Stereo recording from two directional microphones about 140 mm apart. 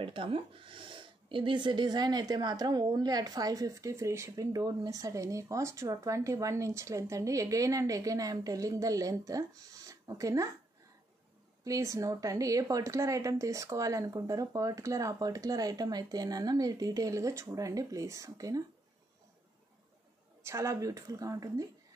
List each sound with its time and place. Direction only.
0.0 s speech: 40° right (ahead or behind); by 10.5 s 25° right (ahead or behind)
11.6 s speech: 25° right (ahead or behind)
20.4 s speech: 20° right (ahead or behind)